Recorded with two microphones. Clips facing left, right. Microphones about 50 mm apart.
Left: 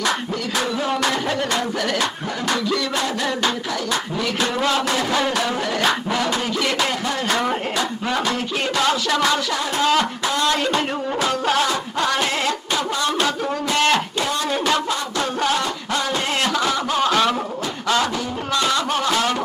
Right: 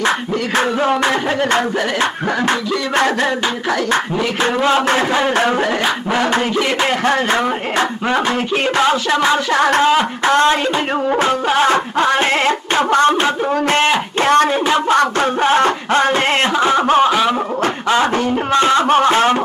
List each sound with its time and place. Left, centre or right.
0.6 s music: right
4.6 s music: right
8.1 s speech: right
9.5 s a sound: right
10.2 s music: right
11.6 s music: right
14.2 s a sound: right
15.4 s music: right
17.0 s snicker: centre
18.5 s music: right